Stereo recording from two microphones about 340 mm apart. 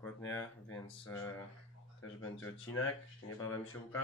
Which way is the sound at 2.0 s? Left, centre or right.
Left.